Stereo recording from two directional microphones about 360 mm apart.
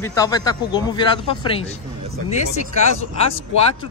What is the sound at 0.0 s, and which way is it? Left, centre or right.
A man's voice, centre.